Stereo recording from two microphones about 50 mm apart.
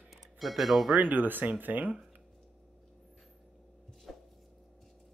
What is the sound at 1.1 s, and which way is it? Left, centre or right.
Speech, right.